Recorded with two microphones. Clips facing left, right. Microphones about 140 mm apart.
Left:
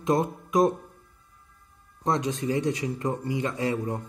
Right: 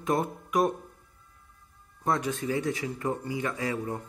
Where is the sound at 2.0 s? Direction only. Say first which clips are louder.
Left 2 dB; 20° left (ahead or behind).